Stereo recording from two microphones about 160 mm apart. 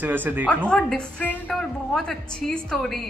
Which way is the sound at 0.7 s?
5° left (ahead or behind).